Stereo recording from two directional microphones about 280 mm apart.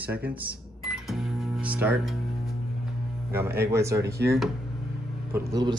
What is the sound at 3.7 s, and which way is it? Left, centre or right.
Speech, centre.